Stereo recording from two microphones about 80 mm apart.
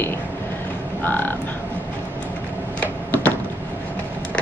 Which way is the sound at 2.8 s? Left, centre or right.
Left.